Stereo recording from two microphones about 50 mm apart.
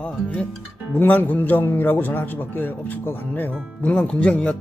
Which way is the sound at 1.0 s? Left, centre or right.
Left.